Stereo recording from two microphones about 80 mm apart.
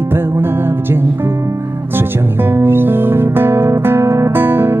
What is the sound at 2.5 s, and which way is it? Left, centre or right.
Music, right.